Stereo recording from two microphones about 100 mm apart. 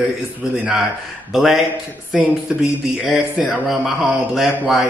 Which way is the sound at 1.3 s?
5° right (ahead or behind).